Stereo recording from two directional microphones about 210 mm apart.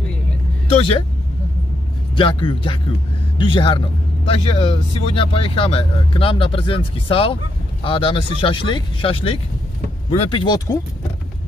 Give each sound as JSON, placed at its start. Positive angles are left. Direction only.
{"t": 0.7, "sound": "speech", "side_deg": 25}
{"t": 2.1, "sound": "speech", "side_deg": 25}